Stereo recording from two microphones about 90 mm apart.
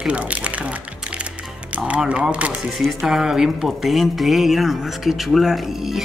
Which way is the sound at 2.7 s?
5° right (ahead or behind).